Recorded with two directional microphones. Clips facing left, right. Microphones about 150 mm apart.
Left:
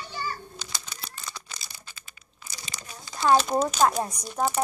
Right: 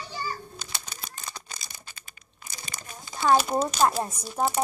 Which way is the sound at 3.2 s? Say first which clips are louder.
Left 1 dB; 10° right (ahead or behind).